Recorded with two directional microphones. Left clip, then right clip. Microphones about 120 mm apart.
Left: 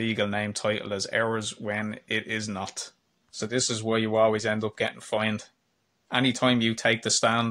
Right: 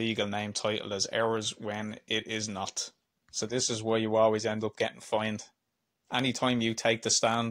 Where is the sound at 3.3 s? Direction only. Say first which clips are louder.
Left 3 dB; 45° right (ahead or behind).